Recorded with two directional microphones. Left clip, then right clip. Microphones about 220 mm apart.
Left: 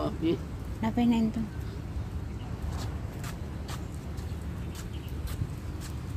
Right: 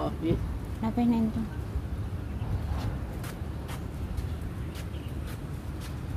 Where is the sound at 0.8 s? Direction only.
15° left (ahead or behind).